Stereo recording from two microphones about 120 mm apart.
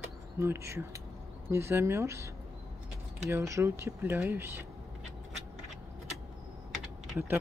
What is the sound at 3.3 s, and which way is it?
Speech, 25° right (ahead or behind).